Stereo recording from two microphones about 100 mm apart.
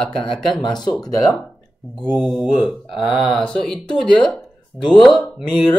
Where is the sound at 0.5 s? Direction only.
45° left (ahead or behind).